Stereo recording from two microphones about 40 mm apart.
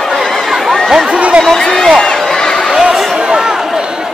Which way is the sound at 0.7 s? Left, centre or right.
Centre.